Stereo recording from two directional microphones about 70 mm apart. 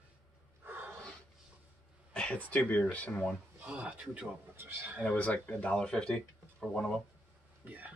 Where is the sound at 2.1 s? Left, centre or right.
Centre.